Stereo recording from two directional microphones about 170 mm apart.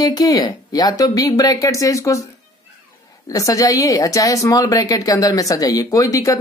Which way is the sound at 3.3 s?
20° left (ahead or behind).